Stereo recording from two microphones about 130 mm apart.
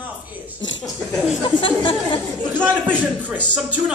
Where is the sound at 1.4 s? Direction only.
40° left (ahead or behind).